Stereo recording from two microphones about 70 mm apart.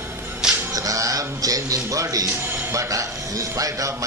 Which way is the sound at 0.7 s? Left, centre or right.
Right.